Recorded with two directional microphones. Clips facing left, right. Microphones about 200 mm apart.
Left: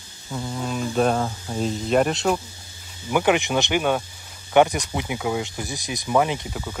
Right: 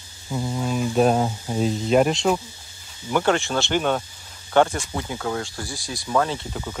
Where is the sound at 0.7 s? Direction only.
5° right (ahead or behind).